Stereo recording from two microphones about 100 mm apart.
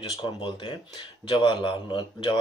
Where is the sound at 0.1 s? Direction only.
50° left (ahead or behind).